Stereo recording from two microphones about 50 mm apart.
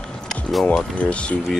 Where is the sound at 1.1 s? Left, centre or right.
Left.